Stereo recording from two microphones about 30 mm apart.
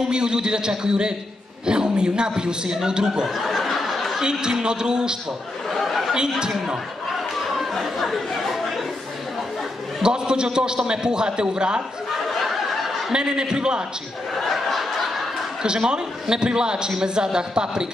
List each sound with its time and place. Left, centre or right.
0.1 s a man's voice: right
3.3 s a sound: centre
4.2 s a man's voice: right
5.7 s chatter: centre
7.8 s chatter: centre
10.0 s a man's voice: right
12.3 s a sound: centre
13.1 s a man's voice: right
14.5 s a sound: centre
15.6 s a man's voice: right